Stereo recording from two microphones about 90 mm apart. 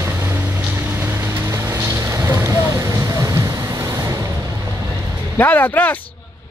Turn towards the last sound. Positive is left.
turn(degrees=20)  # may be behind; listen again after turning